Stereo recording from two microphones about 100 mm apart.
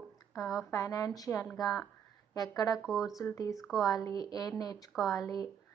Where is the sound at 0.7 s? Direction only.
35° left (ahead or behind).